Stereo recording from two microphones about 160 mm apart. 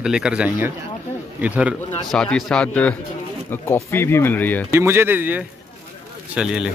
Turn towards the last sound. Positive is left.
turn(degrees=-5)  # may be behind; listen again after turning